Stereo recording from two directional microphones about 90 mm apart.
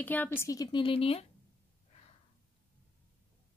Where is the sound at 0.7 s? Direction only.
85° left.